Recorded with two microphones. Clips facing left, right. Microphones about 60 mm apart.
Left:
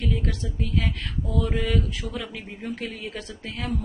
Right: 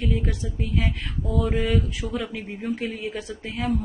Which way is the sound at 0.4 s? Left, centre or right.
Centre.